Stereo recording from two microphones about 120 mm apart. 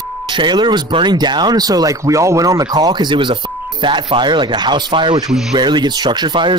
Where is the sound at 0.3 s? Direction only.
40° right (ahead or behind).